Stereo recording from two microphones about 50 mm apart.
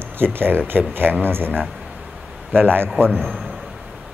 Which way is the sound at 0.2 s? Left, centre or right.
Right.